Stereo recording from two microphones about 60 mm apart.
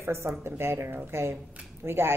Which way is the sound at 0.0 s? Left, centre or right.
Right.